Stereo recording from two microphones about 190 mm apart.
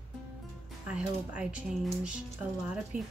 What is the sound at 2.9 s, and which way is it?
Speech, 45° right (ahead or behind).